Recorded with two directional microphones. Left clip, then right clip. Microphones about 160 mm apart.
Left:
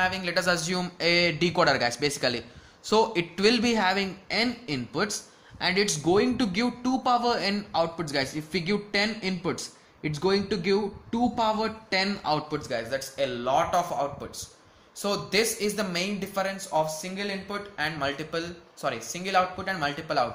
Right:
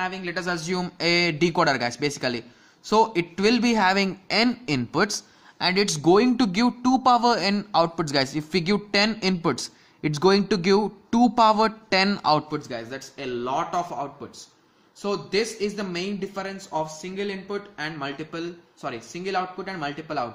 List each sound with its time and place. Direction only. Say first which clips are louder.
0.0 s a man's voice: left 3 dB; 5° right (ahead or behind); by 12.8 s 25° right (ahead or behind)
12.9 s speech: left 3 dB; 10° right (ahead or behind)